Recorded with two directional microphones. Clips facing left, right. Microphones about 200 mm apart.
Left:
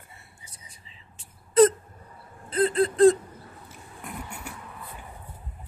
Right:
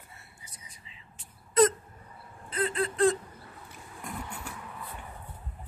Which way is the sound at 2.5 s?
35° left (ahead or behind).